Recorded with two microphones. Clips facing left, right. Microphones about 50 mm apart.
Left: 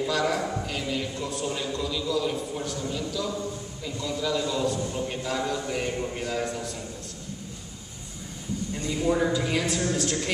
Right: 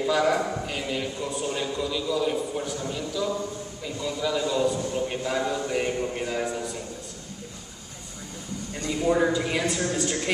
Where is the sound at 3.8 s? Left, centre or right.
Centre.